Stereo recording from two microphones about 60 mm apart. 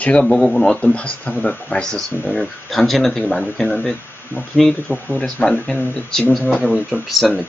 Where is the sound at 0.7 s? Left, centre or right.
Left.